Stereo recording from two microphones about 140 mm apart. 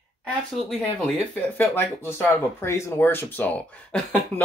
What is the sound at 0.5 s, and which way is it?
Speech, 10° left (ahead or behind).